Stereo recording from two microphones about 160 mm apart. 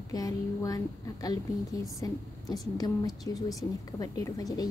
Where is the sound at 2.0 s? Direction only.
20° left (ahead or behind).